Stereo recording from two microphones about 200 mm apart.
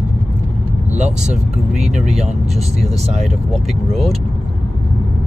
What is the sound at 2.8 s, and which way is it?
Speech, 30° right (ahead or behind).